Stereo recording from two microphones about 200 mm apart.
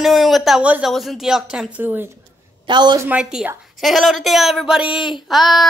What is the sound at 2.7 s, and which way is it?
Speech, 20° right (ahead or behind).